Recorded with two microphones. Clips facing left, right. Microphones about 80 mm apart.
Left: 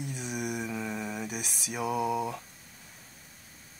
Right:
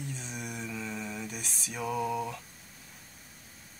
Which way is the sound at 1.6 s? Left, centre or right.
Centre.